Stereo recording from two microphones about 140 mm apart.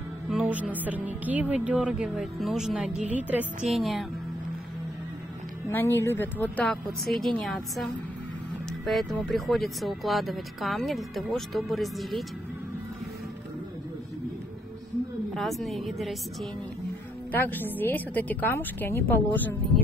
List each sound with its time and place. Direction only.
0.3 s speech: 10° right (ahead or behind)
3.7 s speech: centre (ahead or behind)
5.7 s speech: 15° left (ahead or behind); by 12.3 s centre (ahead or behind)
15.3 s speech: centre (ahead or behind)
17.3 s speech: 15° left (ahead or behind)